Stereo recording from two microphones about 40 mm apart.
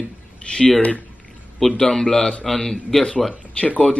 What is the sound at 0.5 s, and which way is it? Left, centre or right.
Speech, left.